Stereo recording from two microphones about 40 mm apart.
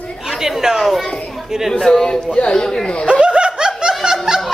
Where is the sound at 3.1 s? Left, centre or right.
Right.